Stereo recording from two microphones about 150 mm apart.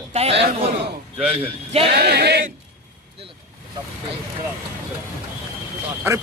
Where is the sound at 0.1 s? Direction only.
45° right (ahead or behind).